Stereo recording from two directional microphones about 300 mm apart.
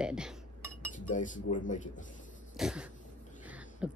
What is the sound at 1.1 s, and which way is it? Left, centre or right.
Speech, left.